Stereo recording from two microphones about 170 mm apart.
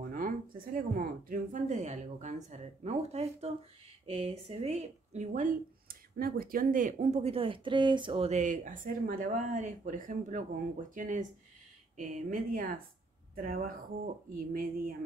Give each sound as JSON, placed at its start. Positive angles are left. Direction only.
{"t": 0.7, "sound": "speech", "side_deg": -55}